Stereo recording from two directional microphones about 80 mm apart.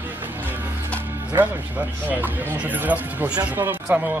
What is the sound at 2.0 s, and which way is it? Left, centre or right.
Speech, right.